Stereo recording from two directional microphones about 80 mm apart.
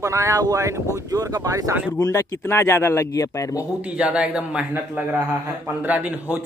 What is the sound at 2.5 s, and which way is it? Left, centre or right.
Speech, left.